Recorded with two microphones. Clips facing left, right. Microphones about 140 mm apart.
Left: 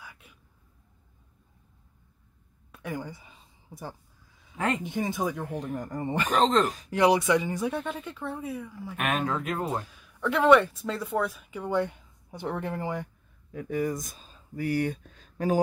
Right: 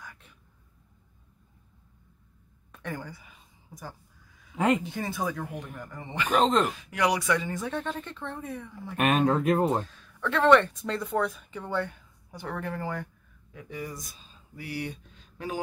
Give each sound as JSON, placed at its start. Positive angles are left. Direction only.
{"t": 0.0, "sound": "a sound", "side_deg": 10}
{"t": 2.7, "sound": "a sound", "side_deg": 10}
{"t": 3.1, "sound": "a sound", "side_deg": 25}
{"t": 4.7, "sound": "speech", "side_deg": 20}
{"t": 5.5, "sound": "speech", "side_deg": 35}
{"t": 6.4, "sound": "speech", "side_deg": -5}
{"t": 6.8, "sound": "speech", "side_deg": 30}
{"t": 9.2, "sound": "speech", "side_deg": -30}
{"t": 9.8, "sound": "speech", "side_deg": 10}
{"t": 13.5, "sound": "speech", "side_deg": 45}